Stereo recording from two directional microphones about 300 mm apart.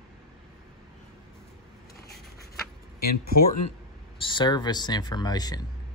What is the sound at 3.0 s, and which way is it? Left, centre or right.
Speech, left.